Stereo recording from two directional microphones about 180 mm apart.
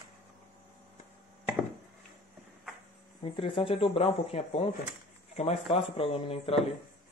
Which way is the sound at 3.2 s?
30° left (ahead or behind).